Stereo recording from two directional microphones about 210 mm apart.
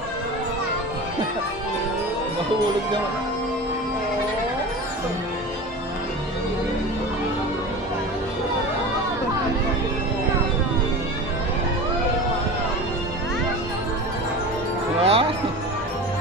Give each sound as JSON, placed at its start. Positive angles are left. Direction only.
{"t": 15.0, "sound": "music", "side_deg": -30}